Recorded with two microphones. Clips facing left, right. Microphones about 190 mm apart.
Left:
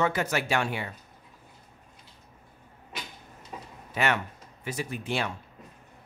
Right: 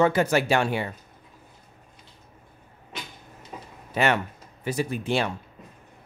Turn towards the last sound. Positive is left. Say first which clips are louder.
# right 5 dB
turn(degrees=-30)  # may be behind; listen again after turning